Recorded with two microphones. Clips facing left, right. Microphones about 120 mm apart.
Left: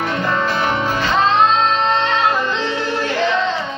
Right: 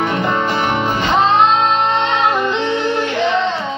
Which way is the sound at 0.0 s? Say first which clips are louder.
Right 2 dB; 15° right (ahead or behind).